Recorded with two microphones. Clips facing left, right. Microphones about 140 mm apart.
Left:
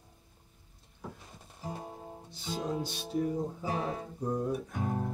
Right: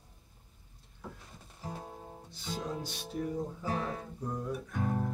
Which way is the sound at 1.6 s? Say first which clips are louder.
Left 2 dB; 10° left (ahead or behind).